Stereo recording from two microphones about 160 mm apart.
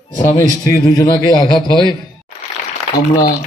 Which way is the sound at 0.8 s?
25° left (ahead or behind).